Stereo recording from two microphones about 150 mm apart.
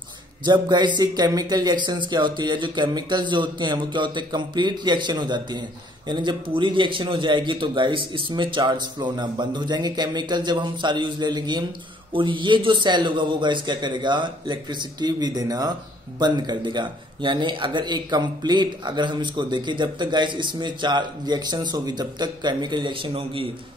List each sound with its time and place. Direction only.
0.5 s a man's voice: 30° right (ahead or behind)